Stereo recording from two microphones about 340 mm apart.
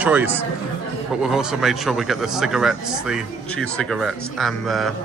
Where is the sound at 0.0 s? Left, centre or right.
Centre.